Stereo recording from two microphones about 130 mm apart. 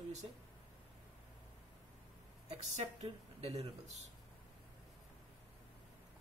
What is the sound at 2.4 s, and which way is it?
Speech, 50° right (ahead or behind).